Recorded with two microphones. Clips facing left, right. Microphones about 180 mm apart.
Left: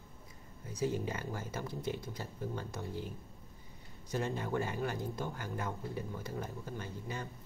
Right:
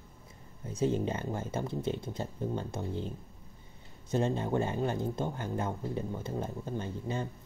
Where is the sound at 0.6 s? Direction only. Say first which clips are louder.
Right 5 dB; 25° right (ahead or behind).